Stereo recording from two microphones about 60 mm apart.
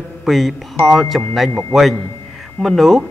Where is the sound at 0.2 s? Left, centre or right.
Centre.